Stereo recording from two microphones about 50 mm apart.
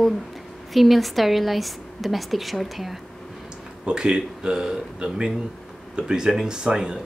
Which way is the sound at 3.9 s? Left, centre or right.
Centre.